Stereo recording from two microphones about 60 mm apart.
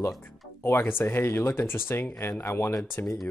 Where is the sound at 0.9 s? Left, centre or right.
Left.